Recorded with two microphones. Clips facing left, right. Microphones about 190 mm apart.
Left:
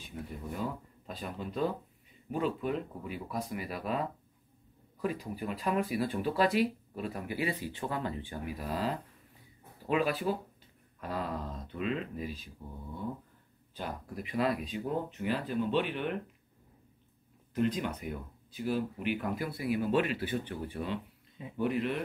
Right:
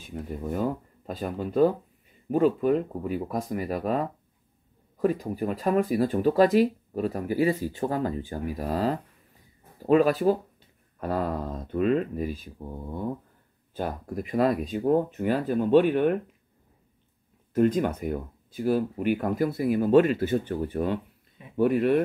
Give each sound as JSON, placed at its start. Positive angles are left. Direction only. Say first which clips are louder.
{"t": 0.4, "sound": "speech", "louder": "right 9 dB", "side_deg": -45}
{"t": 17.6, "sound": "speech", "louder": "right 9 dB", "side_deg": -45}